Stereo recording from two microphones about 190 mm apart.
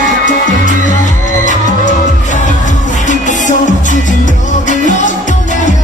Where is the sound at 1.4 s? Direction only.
40° left (ahead or behind).